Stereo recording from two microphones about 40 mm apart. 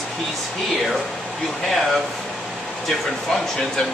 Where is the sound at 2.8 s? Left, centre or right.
Centre.